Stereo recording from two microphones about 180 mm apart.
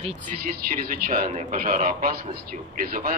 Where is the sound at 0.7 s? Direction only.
50° right (ahead or behind).